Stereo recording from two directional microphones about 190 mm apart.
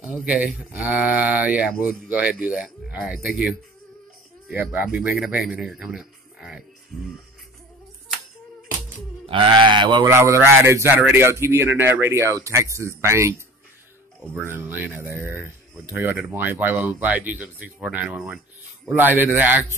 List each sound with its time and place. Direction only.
0.0 s speech: 5° right (ahead or behind)
9.2 s speech: 25° right (ahead or behind); by 19.6 s 10° right (ahead or behind)